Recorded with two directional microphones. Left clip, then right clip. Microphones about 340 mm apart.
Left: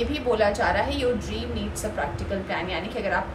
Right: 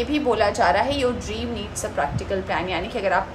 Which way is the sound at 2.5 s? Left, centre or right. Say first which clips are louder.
Right 3 dB; centre.